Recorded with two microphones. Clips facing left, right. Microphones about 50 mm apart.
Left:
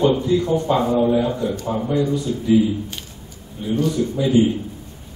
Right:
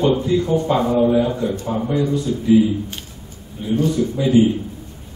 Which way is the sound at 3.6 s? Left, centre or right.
Centre.